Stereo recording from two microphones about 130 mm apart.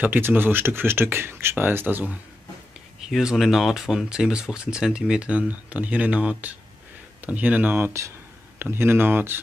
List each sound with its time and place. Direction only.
0.0 s speech: 15° right (ahead or behind)
3.1 s speech: 5° right (ahead or behind)